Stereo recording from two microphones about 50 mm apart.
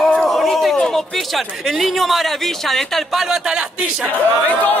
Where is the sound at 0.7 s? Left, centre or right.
Centre.